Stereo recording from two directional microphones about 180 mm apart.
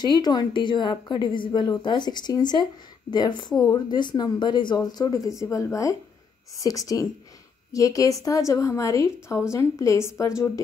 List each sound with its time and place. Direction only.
0.0 s a woman's voice: 25° left (ahead or behind)